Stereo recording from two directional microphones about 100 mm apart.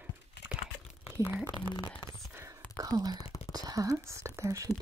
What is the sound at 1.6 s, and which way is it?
Speech, 50° left (ahead or behind).